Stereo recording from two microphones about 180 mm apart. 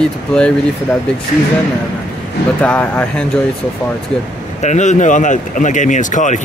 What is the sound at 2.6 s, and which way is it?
Speech, 5° left (ahead or behind).